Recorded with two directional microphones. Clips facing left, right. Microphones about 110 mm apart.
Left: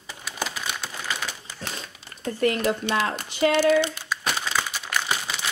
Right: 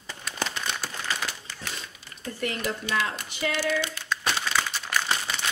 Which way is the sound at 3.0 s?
40° left (ahead or behind).